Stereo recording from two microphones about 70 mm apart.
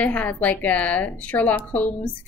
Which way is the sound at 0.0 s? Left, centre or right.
Left.